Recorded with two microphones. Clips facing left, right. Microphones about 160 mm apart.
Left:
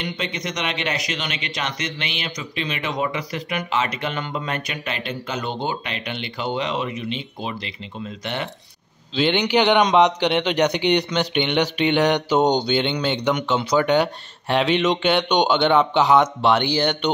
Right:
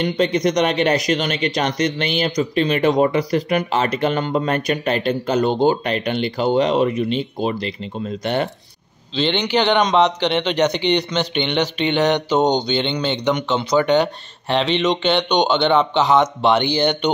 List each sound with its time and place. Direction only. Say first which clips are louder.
0.0 s speech: right 11 dB; 40° right (ahead or behind)
9.1 s a man's voice: even; 10° left (ahead or behind)